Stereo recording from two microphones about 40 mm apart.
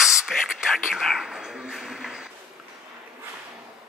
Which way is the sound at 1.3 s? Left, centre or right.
Centre.